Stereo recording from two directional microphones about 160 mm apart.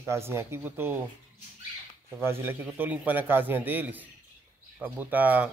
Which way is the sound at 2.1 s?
15° right (ahead or behind).